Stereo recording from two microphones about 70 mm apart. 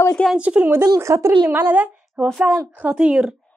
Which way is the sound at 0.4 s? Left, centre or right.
Centre.